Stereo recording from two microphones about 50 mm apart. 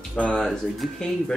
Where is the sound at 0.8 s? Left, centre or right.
Centre.